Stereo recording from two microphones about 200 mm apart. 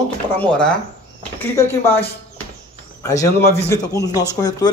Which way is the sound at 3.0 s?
15° left (ahead or behind).